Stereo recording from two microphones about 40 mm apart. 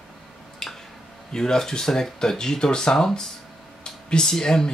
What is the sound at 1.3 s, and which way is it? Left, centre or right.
Speech, centre.